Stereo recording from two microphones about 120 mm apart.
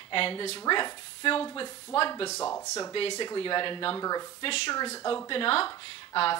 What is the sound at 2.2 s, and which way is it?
Speech, 25° left (ahead or behind).